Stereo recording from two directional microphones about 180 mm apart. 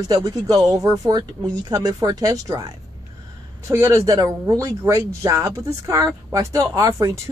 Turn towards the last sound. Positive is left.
turn(degrees=-20)  # may be behind; listen again after turning